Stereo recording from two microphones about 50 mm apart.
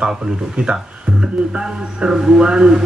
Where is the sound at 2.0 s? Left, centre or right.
Centre.